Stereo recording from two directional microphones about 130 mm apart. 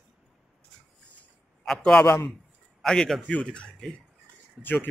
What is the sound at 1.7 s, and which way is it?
A man's voice, 5° left (ahead or behind).